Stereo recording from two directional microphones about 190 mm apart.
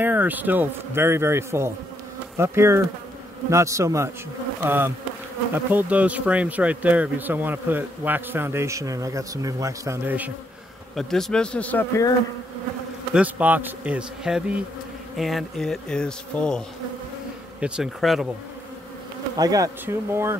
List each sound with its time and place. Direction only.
0.0 s speech: 10° right (ahead or behind)
11.0 s speech: centre (ahead or behind)
13.1 s speech: 10° right (ahead or behind)
19.3 s speech: 20° right (ahead or behind)